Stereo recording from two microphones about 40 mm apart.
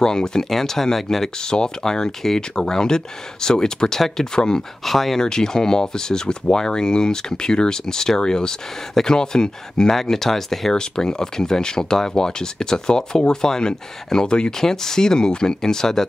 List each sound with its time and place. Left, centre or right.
0.0 s speech: centre
1.4 s speech: centre
4.8 s speech: centre
5.2 s speech: centre
10.8 s speech: centre
14.6 s speech: centre